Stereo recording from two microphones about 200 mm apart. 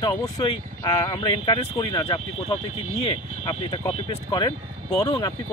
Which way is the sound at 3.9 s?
25° left (ahead or behind).